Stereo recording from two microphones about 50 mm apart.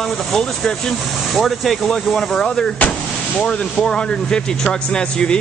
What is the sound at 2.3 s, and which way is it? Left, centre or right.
Speech, centre.